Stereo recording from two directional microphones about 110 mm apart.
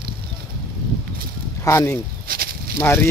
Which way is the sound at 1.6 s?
25° left (ahead or behind).